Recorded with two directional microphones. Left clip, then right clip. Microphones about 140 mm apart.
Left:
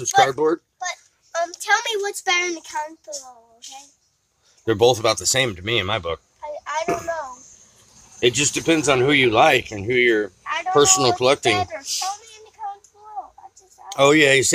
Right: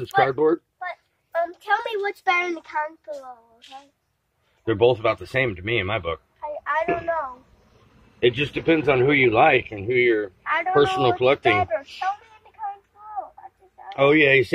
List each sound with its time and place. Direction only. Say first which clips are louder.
0.0 s a child's voice: left 2 dB; 15° left (ahead or behind)
1.6 s a child's voice: left 6 dB; 10° left (ahead or behind)
4.6 s speech: left 2 dB; 45° left (ahead or behind); by 12.1 s 25° left (ahead or behind)
13.8 s speech: left 2 dB; 35° left (ahead or behind)